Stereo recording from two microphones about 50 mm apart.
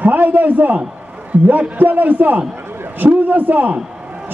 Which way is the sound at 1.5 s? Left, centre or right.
Right.